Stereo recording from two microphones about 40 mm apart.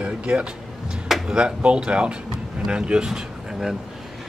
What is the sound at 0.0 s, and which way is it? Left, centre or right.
Music, right.